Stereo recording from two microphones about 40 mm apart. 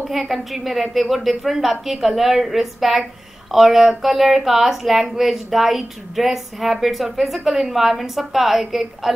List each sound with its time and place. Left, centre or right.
0.1 s speech: centre